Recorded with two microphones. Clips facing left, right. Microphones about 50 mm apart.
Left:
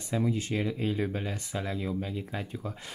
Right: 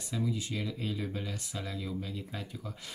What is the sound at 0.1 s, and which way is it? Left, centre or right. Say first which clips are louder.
Speech: left 5 dB; left.